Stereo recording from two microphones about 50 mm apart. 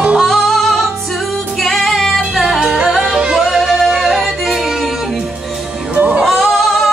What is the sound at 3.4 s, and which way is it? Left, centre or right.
Music, centre.